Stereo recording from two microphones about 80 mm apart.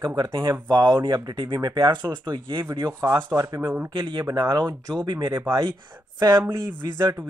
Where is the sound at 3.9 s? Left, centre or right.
Right.